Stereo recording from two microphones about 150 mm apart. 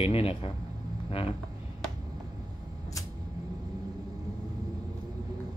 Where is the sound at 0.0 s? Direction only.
40° left (ahead or behind).